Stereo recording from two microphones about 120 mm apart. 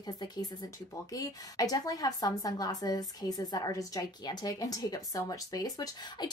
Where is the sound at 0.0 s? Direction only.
35° left (ahead or behind).